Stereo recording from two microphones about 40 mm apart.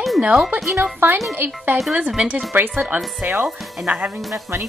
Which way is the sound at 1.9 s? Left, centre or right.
Right.